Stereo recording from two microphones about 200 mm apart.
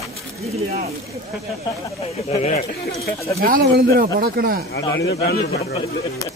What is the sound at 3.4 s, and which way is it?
Speech, 45° right (ahead or behind).